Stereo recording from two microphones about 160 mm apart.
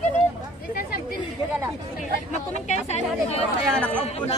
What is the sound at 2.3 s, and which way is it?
Speech, 45° left (ahead or behind).